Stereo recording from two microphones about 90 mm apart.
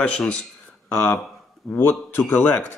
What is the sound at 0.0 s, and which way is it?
A man's voice, 15° left (ahead or behind).